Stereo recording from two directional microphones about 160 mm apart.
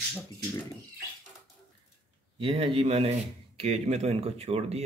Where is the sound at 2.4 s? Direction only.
35° right (ahead or behind).